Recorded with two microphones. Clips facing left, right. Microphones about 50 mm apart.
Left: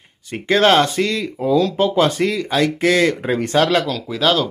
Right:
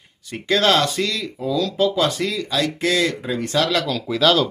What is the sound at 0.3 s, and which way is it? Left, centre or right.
Speech, left.